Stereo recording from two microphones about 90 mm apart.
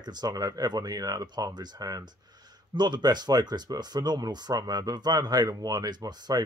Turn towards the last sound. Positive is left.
turn(degrees=-50)  # may be behind; listen again after turning